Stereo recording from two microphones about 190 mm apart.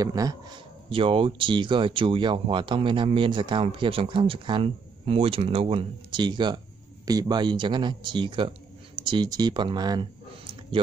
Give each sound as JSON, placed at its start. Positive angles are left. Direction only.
{"t": 0.0, "sound": "speech", "side_deg": -20}